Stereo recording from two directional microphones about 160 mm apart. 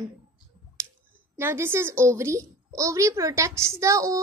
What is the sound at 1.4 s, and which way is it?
A woman's voice, 15° right (ahead or behind).